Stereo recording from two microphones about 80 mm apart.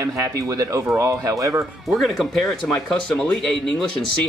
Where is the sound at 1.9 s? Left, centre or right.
Centre.